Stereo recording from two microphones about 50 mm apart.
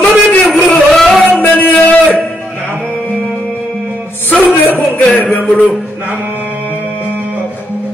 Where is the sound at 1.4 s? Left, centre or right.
Left.